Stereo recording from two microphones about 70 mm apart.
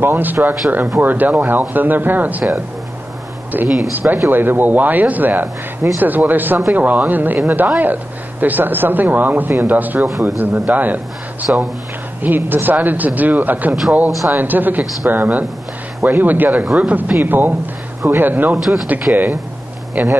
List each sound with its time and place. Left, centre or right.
0.0 s speech: right
3.6 s speech: centre
3.9 s speech: right
19.1 s speech: centre
20.0 s speech: right